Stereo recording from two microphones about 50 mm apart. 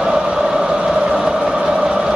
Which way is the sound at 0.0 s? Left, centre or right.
Centre.